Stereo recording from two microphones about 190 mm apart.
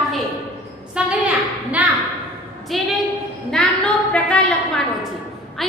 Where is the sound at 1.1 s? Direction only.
10° right (ahead or behind).